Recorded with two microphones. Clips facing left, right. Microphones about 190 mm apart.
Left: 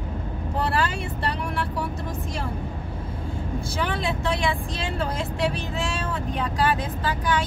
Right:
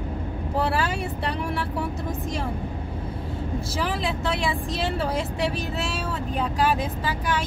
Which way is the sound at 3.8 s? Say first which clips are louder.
Left 1 dB; centre (ahead or behind).